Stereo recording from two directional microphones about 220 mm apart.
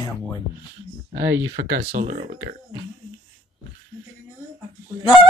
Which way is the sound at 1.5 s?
45° right (ahead or behind).